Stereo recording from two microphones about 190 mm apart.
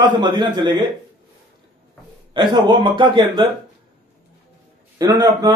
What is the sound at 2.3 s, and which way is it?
A man's voice, 25° right (ahead or behind).